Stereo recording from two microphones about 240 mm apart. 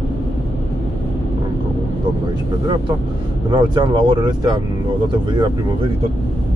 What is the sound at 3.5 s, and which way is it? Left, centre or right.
Speech, centre.